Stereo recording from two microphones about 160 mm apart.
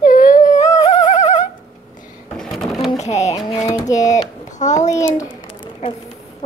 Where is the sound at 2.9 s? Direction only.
45° left (ahead or behind).